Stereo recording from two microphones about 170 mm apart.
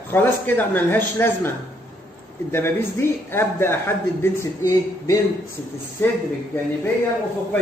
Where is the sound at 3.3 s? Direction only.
15° left (ahead or behind).